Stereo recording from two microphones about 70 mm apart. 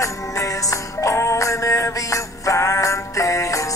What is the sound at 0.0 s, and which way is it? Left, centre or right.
Music, left.